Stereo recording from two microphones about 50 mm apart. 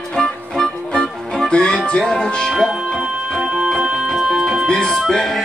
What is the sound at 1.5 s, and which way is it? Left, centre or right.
Music, centre.